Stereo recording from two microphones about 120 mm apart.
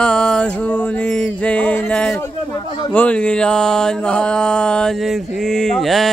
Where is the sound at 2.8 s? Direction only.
10° left (ahead or behind).